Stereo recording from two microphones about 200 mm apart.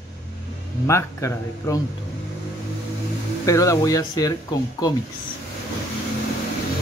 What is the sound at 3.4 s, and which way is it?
Speech, 15° left (ahead or behind).